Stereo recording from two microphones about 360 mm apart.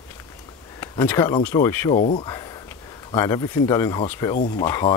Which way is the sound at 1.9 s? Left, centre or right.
Centre.